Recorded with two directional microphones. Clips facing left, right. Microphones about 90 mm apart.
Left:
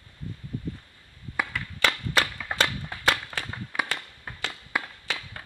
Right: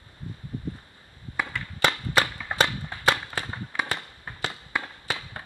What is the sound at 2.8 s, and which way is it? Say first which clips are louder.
Firecracker: right 2 dB; 5° right (ahead or behind).